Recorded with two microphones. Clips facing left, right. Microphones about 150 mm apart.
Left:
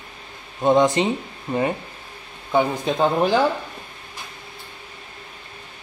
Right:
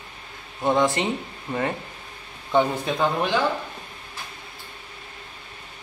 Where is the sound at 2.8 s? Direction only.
30° left (ahead or behind).